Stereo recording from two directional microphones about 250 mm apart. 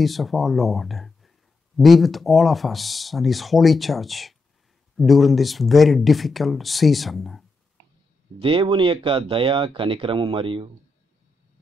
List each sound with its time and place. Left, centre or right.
0.0 s speech: centre
8.4 s speech: right